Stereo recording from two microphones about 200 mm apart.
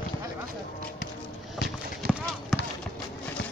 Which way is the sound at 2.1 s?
Centre (ahead or behind).